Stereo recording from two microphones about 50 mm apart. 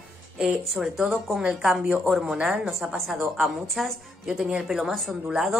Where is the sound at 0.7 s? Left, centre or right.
Centre.